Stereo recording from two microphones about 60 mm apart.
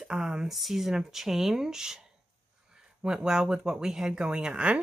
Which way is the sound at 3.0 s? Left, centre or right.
Centre.